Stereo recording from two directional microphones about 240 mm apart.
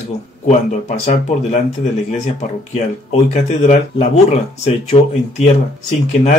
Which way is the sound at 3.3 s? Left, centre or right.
Left.